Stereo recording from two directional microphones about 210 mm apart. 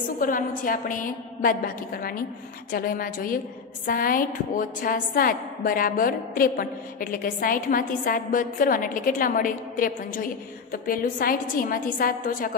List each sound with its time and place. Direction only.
0.2 s a woman's voice: 40° left (ahead or behind)